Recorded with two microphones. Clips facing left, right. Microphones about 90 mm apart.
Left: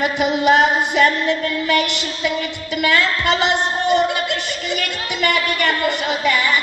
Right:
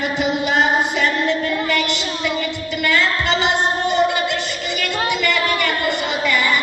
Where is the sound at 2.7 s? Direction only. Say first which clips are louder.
Left 2 dB; 55° left (ahead or behind).